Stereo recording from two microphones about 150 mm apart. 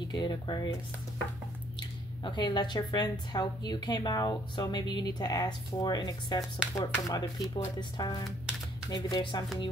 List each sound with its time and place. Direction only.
0.1 s speech: 30° left (ahead or behind)
1.8 s speech: 30° left (ahead or behind)